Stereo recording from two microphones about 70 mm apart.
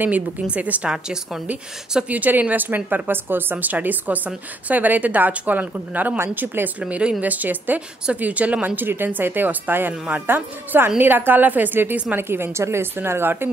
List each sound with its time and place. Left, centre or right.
0.0 s speech: right
0.9 s speech: centre
1.5 s speech: right
6.8 s a woman's voice: centre; by 13.5 s right